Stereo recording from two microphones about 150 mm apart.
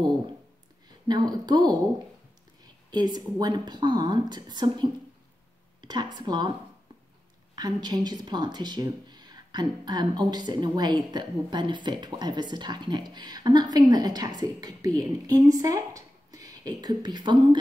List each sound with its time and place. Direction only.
1.0 s speech: 25° right (ahead or behind)
7.5 s a woman's voice: 25° right (ahead or behind)